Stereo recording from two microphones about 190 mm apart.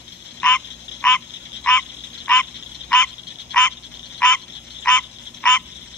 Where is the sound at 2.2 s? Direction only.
5° left (ahead or behind).